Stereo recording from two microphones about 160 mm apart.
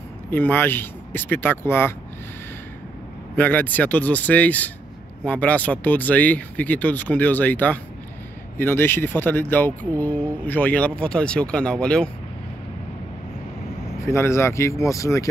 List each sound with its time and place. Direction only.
0.3 s speech: 10° left (ahead or behind)
3.3 s speech: 10° left (ahead or behind)
14.0 s speech: 15° left (ahead or behind)